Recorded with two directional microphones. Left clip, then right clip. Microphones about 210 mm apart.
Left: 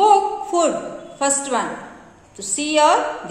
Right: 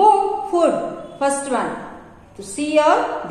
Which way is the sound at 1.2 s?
45° left (ahead or behind).